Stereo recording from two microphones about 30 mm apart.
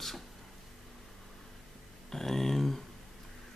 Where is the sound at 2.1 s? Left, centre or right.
Centre.